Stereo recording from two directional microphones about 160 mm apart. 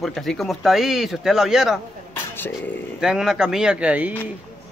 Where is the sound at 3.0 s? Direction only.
5° right (ahead or behind).